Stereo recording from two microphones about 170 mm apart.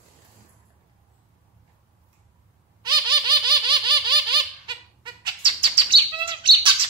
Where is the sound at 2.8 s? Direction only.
25° right (ahead or behind).